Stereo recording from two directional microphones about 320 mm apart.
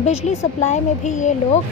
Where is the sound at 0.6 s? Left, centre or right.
Left.